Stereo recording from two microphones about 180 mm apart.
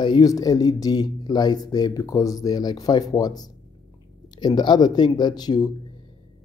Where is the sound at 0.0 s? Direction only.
20° left (ahead or behind).